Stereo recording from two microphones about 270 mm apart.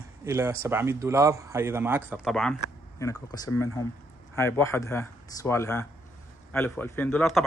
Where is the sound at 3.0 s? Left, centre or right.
Centre.